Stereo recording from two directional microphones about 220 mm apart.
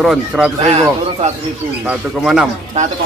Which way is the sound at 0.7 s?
30° right (ahead or behind).